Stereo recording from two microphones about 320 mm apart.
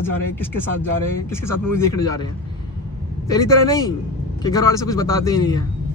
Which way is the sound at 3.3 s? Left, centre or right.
Centre.